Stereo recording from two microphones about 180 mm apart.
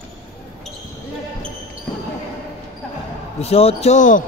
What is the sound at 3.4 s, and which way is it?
Speech, 35° left (ahead or behind).